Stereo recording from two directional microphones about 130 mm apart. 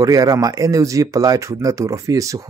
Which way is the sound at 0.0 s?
25° right (ahead or behind).